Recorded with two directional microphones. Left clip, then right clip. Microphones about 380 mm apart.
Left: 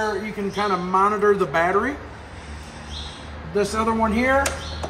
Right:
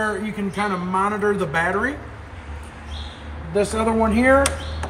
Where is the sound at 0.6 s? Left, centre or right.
Centre.